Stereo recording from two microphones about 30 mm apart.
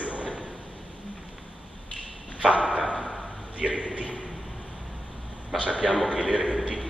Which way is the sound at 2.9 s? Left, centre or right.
Centre.